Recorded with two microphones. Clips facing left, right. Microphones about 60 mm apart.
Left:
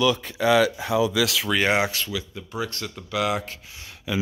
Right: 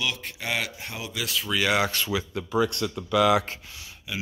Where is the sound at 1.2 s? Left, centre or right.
Left.